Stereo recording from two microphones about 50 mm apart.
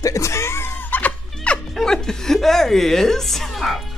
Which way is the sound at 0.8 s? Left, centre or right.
Left.